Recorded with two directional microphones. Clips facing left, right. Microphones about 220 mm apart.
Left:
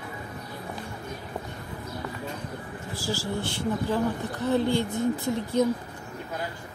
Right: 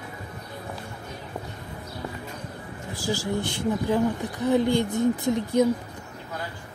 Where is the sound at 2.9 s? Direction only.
15° right (ahead or behind).